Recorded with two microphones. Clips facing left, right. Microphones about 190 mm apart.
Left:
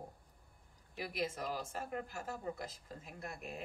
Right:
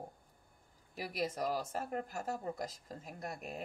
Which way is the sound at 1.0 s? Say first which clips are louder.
Right 2 dB; 40° right (ahead or behind).